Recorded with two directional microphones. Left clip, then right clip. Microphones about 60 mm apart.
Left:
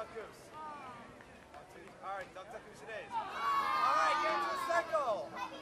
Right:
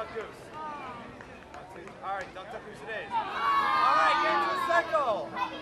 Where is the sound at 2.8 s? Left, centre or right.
Centre.